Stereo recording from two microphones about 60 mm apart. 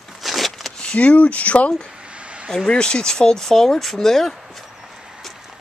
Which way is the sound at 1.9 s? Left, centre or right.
Centre.